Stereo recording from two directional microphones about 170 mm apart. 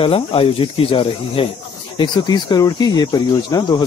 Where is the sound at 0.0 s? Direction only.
30° left (ahead or behind).